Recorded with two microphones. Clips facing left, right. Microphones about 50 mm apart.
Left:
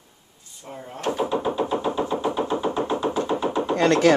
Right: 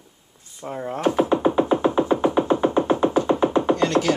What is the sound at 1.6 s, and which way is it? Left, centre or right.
Music, right.